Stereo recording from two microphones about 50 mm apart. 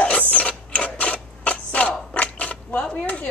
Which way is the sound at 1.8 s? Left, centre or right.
Left.